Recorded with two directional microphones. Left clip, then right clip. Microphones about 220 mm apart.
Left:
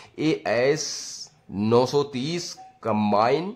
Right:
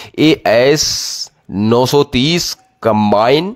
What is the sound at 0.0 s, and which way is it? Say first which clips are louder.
Speech: right 13 dB; 40° right (ahead or behind).